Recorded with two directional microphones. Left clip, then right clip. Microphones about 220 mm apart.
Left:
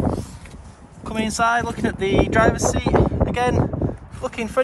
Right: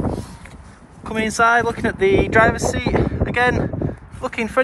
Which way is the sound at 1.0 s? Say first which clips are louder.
Right 4 dB; 15° left (ahead or behind).